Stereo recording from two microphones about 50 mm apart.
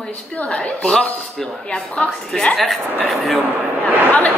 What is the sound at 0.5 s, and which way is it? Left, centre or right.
Speech, centre.